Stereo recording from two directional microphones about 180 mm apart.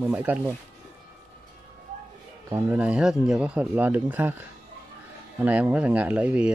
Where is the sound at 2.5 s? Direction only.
10° right (ahead or behind).